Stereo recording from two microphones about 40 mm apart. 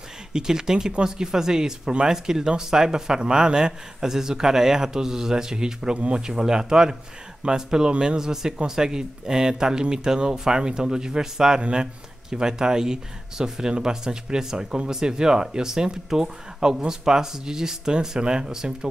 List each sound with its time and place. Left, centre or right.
0.3 s speech: centre
7.9 s a man's voice: right
8.2 s speech: centre